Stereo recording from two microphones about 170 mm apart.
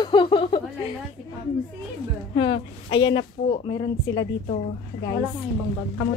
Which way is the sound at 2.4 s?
30° left (ahead or behind).